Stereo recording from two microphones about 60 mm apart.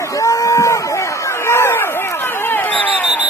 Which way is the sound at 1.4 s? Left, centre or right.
Left.